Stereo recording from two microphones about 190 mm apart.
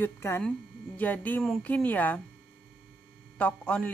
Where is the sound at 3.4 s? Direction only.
5° left (ahead or behind).